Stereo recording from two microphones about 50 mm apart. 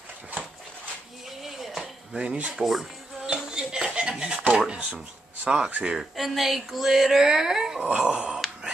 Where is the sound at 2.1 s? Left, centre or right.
Centre.